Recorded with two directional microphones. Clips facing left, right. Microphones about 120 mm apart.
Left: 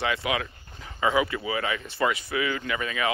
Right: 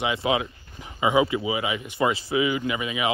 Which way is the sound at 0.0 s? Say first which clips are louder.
Right 3 dB; 25° right (ahead or behind).